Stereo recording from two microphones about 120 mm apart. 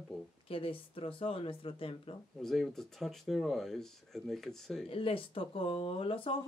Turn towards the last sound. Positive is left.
turn(degrees=50)  # may be behind; listen again after turning